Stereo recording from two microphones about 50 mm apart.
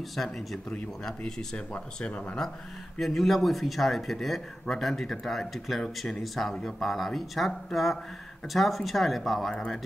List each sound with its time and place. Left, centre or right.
0.1 s speech: centre
0.7 s speech: centre
3.0 s speech: centre
9.5 s speech: centre